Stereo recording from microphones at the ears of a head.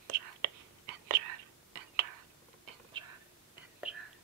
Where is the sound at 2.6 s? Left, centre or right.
Right.